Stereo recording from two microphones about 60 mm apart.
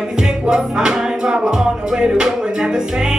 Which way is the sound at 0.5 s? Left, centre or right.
Centre.